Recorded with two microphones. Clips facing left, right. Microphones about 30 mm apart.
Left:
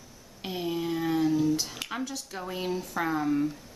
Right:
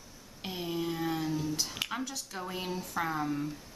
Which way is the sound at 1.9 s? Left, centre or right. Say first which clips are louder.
Left 3 dB; centre.